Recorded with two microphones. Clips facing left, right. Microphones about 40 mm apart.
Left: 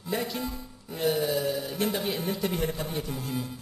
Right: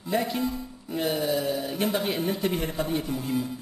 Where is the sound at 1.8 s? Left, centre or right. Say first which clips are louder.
Right 3 dB; right.